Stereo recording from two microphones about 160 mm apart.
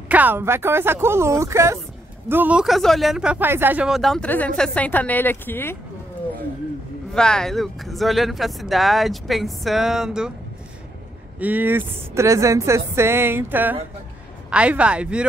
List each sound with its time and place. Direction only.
0.1 s speech: 10° right (ahead or behind); by 5.8 s 15° left (ahead or behind)
7.2 s speech: 5° left (ahead or behind)
11.3 s speech: 10° right (ahead or behind)